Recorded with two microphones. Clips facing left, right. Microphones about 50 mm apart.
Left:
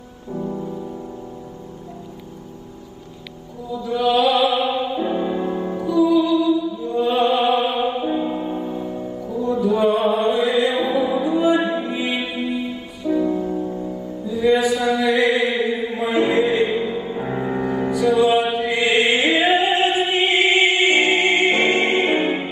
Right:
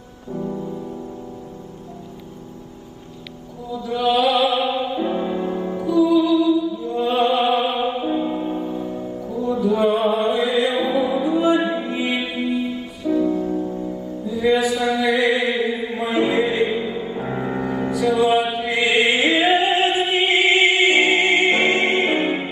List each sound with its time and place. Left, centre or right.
0.3 s music: left
3.7 s music: centre
5.5 s music: centre
5.9 s music: centre
8.7 s music: centre
9.5 s music: centre
13.2 s music: centre
14.3 s chant: centre